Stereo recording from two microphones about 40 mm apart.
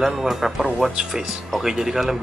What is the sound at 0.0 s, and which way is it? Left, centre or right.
Speech, centre.